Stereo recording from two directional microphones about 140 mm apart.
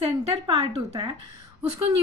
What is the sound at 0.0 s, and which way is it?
Speech, 45° right (ahead or behind).